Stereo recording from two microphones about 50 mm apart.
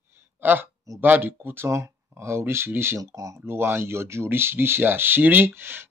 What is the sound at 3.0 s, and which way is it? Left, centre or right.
Speech, right.